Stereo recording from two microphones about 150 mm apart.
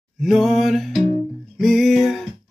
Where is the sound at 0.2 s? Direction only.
Centre (ahead or behind).